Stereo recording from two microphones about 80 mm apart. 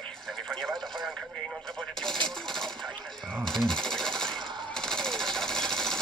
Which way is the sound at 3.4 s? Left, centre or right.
Centre.